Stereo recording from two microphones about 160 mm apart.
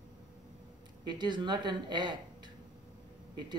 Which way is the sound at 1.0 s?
30° right (ahead or behind).